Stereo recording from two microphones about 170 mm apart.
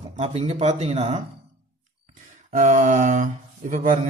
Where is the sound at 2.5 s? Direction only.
45° right (ahead or behind).